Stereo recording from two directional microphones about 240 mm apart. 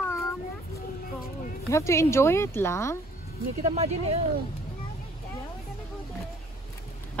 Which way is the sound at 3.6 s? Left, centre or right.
Right.